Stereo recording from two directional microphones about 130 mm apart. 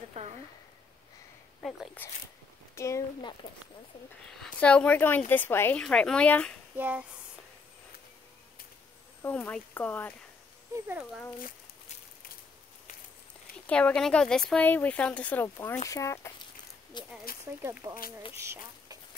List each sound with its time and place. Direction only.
0.2 s speech: 60° right (ahead or behind)
2.0 s speech: 10° left (ahead or behind)
4.3 s a woman's voice: 5° left (ahead or behind)
6.8 s speech: 10° right (ahead or behind)
9.2 s speech: 10° left (ahead or behind)
13.7 s speech: 10° left (ahead or behind)
16.9 s speech: 35° left (ahead or behind)
17.5 s speech: 15° right (ahead or behind)